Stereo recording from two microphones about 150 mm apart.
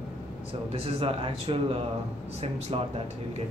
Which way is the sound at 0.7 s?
40° right (ahead or behind).